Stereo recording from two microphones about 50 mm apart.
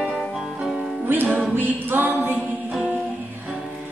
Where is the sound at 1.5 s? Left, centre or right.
Right.